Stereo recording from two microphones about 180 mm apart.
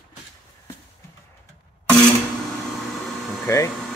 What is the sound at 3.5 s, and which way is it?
Speech, 15° left (ahead or behind).